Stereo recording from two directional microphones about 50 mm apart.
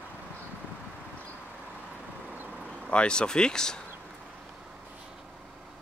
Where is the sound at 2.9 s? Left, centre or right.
Centre.